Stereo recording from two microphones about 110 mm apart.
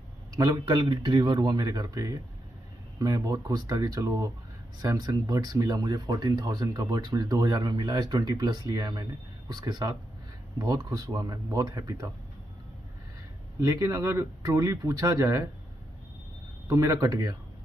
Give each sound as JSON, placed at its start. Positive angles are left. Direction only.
{"t": 0.3, "sound": "a man's voice", "side_deg": -35}
{"t": 13.6, "sound": "speech", "side_deg": -30}
{"t": 16.6, "sound": "speech", "side_deg": -30}